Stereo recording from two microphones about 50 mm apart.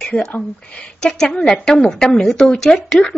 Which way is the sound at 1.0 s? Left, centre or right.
Centre.